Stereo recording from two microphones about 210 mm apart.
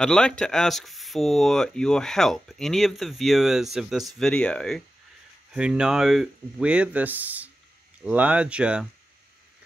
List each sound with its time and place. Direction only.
0.0 s speech: 5° left (ahead or behind)